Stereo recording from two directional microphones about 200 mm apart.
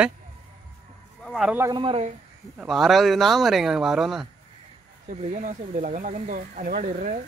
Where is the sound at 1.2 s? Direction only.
Centre (ahead or behind).